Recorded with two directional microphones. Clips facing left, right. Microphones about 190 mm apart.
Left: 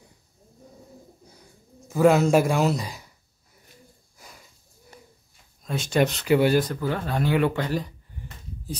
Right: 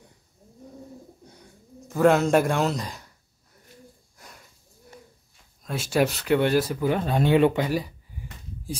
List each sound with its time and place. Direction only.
1.2 s bird: centre (ahead or behind)
4.2 s sniff: centre (ahead or behind)
5.6 s speech: 5° right (ahead or behind)
6.6 s speech: 10° right (ahead or behind)